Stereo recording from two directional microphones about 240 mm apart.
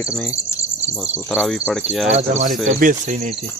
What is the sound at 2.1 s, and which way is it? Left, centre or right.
Cricket, right.